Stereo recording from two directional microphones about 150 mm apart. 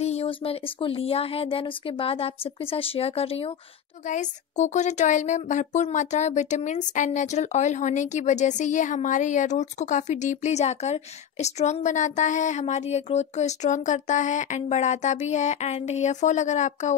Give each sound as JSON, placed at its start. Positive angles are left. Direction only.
{"t": 0.0, "sound": "speech", "side_deg": 45}
{"t": 4.1, "sound": "a woman's voice", "side_deg": 55}